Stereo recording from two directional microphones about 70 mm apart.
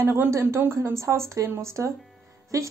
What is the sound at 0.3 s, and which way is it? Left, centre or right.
Speech, right.